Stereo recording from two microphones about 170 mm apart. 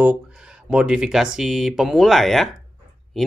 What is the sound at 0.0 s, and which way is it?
Speech, 5° right (ahead or behind).